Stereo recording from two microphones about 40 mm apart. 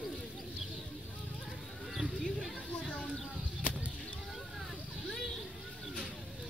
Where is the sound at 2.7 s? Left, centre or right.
Left.